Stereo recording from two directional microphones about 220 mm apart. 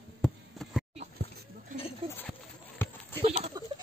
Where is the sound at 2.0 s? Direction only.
25° right (ahead or behind).